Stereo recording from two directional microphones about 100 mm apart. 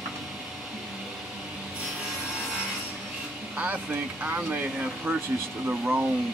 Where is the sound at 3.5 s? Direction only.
15° right (ahead or behind).